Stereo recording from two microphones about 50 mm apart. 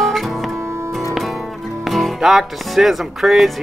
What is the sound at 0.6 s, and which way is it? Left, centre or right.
Music, right.